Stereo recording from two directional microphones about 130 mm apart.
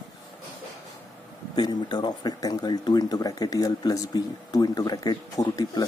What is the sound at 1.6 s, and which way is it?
Speech, 35° left (ahead or behind).